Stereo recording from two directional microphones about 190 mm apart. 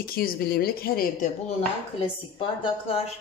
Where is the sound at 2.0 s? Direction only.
30° left (ahead or behind).